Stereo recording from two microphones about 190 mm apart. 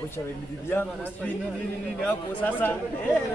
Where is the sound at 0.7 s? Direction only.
10° left (ahead or behind).